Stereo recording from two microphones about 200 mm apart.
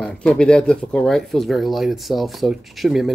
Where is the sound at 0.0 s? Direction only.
5° left (ahead or behind).